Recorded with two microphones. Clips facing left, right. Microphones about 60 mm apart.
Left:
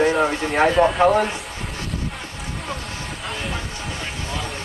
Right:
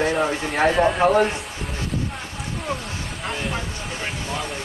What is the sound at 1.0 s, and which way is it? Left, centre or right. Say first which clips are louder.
Speech: even; right.